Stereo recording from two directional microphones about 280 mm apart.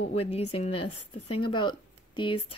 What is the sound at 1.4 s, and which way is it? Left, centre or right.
Speech, centre.